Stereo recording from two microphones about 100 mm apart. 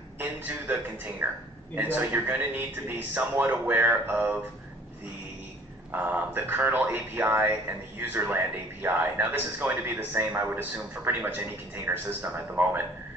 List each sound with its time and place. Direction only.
0.2 s a man's voice: 20° right (ahead or behind)
6.0 s a man's voice: 20° right (ahead or behind)